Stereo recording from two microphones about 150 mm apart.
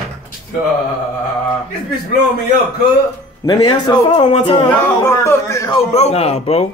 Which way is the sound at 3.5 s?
30° left (ahead or behind).